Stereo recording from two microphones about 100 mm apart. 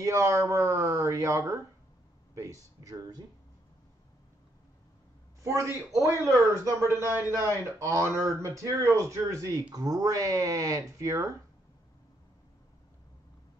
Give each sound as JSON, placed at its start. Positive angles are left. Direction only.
{"t": 0.0, "sound": "speech", "side_deg": -35}
{"t": 5.4, "sound": "speech", "side_deg": -30}